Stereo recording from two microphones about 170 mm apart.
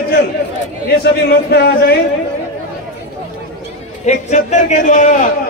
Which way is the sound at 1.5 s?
70° left (ahead or behind).